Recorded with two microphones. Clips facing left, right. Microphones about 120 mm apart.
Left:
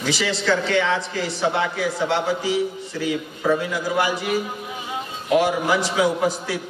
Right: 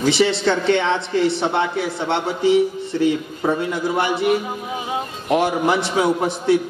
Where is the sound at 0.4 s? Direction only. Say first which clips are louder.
Right 3 dB; 25° right (ahead or behind).